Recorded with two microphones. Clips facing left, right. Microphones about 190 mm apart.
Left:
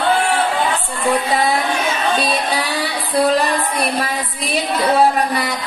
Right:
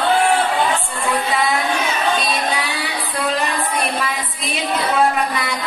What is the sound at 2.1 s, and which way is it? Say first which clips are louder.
Music: left 2 dB; 35° left (ahead or behind).